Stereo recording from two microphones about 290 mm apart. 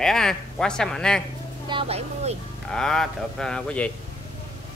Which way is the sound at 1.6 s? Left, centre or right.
Centre.